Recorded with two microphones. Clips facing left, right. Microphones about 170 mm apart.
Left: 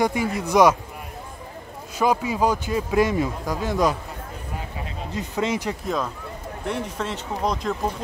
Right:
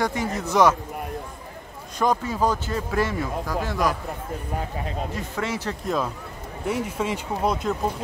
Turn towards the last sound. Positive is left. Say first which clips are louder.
# right 1 dB
turn(degrees=-5)  # may be behind; listen again after turning